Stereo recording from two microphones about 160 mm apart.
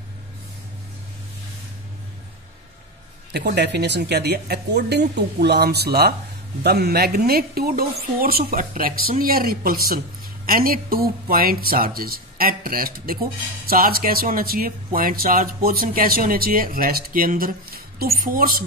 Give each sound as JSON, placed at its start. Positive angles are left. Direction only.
{"t": 3.3, "sound": "a woman's voice", "side_deg": -90}